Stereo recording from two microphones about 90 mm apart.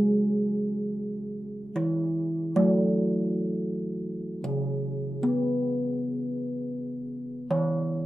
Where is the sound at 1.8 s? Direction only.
Centre (ahead or behind).